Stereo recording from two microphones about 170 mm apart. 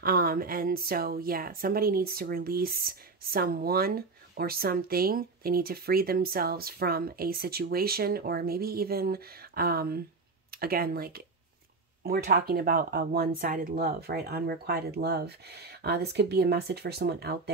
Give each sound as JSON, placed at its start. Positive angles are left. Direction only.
{"t": 0.0, "sound": "speech", "side_deg": -60}